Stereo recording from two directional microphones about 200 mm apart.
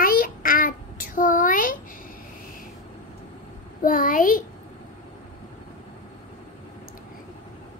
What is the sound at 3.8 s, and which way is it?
Speech, 45° left (ahead or behind).